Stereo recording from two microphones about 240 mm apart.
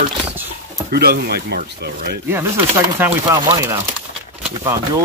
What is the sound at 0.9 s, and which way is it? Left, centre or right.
Speech, right.